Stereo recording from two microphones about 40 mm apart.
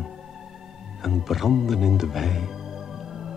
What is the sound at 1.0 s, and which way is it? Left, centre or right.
Speech, centre.